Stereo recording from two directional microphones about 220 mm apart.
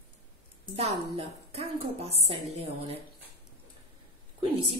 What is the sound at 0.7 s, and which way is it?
A woman's voice, 30° right (ahead or behind).